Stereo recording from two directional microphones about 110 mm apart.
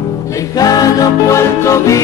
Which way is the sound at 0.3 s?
30° left (ahead or behind).